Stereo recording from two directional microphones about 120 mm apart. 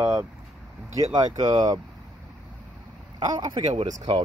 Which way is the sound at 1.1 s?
35° right (ahead or behind).